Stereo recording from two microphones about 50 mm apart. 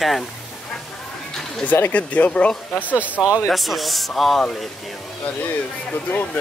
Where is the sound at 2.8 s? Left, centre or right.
Right.